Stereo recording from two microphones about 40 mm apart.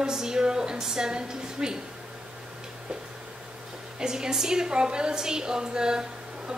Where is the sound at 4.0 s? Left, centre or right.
Centre.